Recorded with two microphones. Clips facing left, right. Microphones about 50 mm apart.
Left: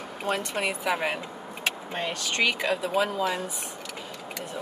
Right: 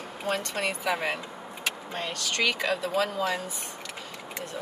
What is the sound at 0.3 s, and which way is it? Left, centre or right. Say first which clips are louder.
Speech: left 1 dB; centre.